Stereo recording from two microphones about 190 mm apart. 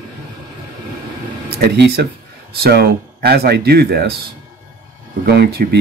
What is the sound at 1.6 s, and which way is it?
Speech, 60° right (ahead or behind).